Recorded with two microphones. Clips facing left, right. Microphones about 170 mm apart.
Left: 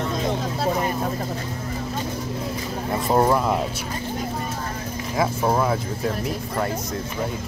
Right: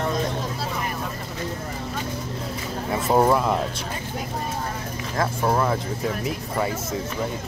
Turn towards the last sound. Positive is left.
turn(degrees=-5)  # may be behind; listen again after turning